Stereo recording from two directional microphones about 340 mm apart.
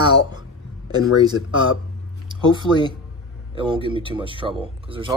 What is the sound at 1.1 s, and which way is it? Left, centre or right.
Speech, centre.